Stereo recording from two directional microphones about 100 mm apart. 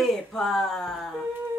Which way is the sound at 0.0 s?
5° left (ahead or behind).